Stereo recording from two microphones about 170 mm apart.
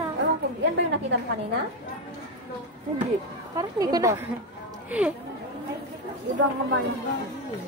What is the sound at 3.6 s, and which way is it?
Speech, 20° right (ahead or behind).